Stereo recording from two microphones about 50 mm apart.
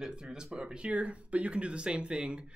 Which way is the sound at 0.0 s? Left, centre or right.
Centre.